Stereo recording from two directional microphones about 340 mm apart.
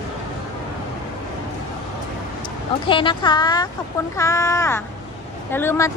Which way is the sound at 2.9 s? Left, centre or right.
Centre.